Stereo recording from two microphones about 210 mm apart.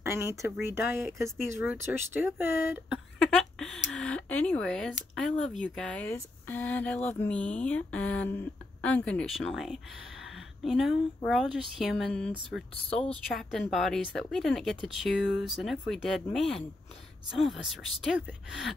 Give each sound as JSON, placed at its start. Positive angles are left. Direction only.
{"t": 0.0, "sound": "speech", "side_deg": -15}
{"t": 3.2, "sound": "speech", "side_deg": 5}